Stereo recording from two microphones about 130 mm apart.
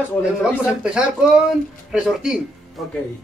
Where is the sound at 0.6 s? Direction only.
10° right (ahead or behind).